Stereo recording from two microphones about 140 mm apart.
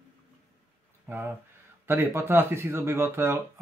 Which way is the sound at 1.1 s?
15° right (ahead or behind).